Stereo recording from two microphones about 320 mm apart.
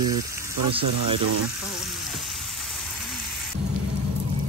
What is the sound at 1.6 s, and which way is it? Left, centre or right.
Frying, centre.